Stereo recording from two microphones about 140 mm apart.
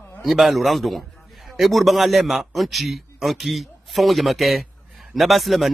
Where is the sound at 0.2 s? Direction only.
Centre (ahead or behind).